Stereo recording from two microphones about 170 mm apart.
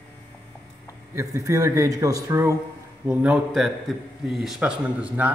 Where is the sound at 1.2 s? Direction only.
15° right (ahead or behind).